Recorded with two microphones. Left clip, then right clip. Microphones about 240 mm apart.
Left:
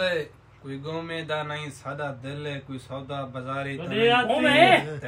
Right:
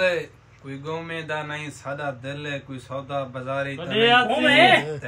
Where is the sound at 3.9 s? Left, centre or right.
Centre.